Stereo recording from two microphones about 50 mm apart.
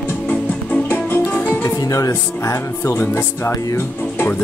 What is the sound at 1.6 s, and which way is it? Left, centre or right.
Music, left.